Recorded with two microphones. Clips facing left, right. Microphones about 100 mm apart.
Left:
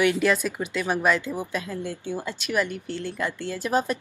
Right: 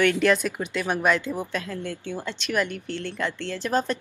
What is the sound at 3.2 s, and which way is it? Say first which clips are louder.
Speech: even; 10° left (ahead or behind).